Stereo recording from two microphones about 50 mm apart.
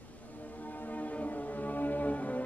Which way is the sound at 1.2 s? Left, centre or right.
Left.